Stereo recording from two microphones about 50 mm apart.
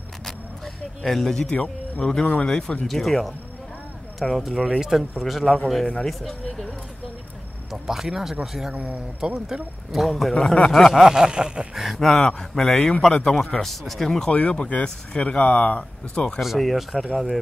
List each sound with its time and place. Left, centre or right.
1.0 s speech: centre
2.9 s speech: centre
5.2 s speech: centre
7.7 s a sound: centre
8.7 s speech: right
9.2 s a sound: centre
9.9 s speech: centre
10.3 s speech: centre
10.9 s a sound: centre
11.7 s speech: centre
14.3 s speech: left
15.4 s speech: left
16.3 s speech: centre